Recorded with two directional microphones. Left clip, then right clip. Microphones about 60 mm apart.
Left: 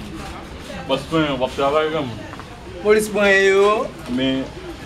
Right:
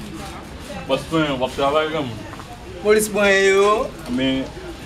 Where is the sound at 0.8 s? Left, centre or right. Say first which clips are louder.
Even; centre.